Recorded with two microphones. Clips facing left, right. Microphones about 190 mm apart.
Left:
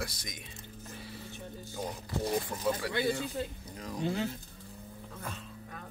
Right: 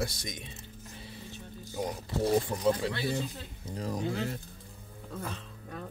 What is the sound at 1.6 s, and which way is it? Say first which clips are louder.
Music: right 5 dB; 15° right (ahead or behind).